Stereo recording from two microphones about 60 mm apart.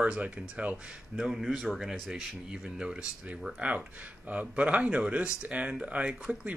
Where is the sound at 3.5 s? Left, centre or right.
Right.